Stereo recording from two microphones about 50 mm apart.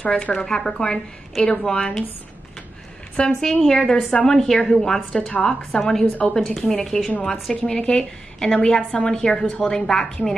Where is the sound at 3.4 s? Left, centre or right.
Centre.